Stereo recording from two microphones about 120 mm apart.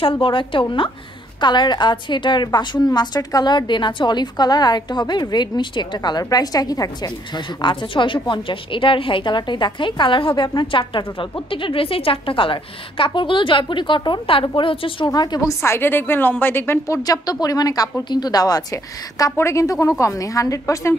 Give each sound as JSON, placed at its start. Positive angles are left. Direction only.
{"t": 0.0, "sound": "a woman's voice", "side_deg": 45}
{"t": 15.0, "sound": "a woman's voice", "side_deg": 30}
{"t": 15.6, "sound": "a woman's voice", "side_deg": 20}